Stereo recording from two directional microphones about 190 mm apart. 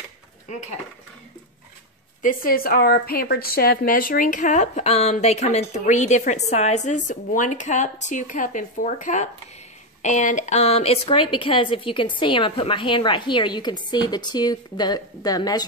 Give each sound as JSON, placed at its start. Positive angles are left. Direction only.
{"t": 0.5, "sound": "a woman's voice", "side_deg": 40}
{"t": 2.2, "sound": "a woman's voice", "side_deg": 50}